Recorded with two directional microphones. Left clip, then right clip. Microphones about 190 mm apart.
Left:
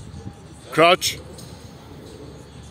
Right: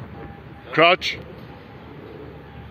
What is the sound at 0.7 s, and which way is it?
Speech, 15° left (ahead or behind).